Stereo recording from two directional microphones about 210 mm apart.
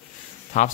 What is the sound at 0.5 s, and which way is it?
Speech, 35° left (ahead or behind).